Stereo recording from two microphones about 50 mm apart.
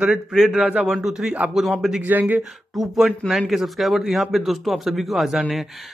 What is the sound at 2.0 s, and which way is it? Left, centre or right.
Speech, right.